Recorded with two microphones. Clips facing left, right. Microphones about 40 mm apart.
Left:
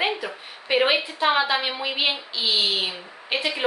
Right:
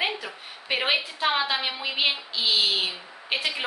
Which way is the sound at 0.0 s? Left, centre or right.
Centre.